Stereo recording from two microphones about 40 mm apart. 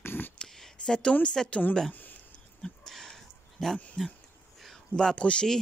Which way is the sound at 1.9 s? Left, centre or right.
Left.